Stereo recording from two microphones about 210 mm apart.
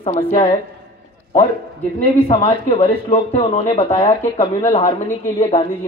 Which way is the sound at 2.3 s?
30° left (ahead or behind).